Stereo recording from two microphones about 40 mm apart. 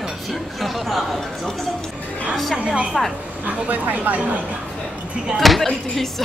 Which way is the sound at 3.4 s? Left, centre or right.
Right.